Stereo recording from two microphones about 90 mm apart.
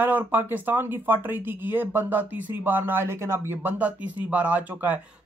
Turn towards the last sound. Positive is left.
turn(degrees=-20)  # may be behind; listen again after turning